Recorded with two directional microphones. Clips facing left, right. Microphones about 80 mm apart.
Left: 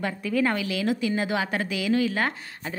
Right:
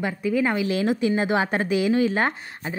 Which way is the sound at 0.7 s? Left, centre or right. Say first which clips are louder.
Right 4 dB; right.